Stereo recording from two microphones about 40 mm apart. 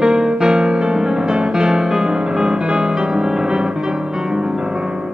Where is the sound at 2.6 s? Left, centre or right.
Right.